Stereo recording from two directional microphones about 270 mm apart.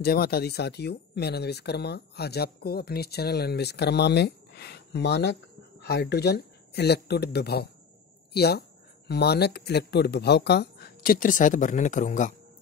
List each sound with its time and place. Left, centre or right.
0.0 s speech: left